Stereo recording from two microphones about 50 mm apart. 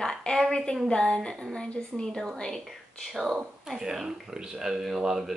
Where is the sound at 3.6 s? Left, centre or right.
Centre.